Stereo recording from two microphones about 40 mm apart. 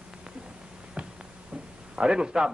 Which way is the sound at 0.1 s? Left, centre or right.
Right.